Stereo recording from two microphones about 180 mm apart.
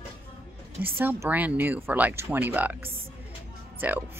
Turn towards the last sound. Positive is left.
turn(degrees=-10)  # may be behind; listen again after turning